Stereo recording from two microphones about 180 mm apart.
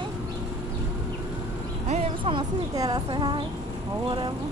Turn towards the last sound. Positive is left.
turn(degrees=-25)  # may be behind; listen again after turning